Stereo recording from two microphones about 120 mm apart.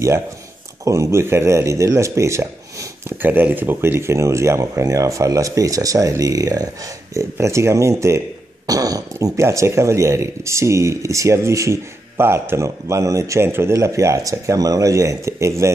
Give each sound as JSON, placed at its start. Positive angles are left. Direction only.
{"t": 0.8, "sound": "speech", "side_deg": -25}